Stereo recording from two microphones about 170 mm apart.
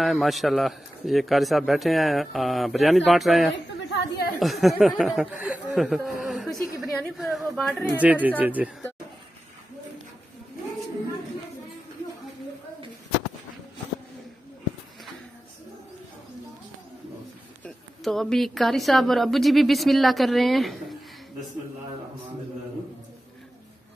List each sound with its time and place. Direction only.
0.0 s a man's voice: centre (ahead or behind)
8.0 s speech: 10° right (ahead or behind)
17.6 s a man's voice: centre (ahead or behind)